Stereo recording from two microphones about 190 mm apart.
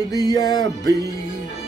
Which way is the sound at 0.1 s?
20° left (ahead or behind).